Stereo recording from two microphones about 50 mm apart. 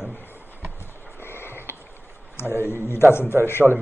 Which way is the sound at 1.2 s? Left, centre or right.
Left.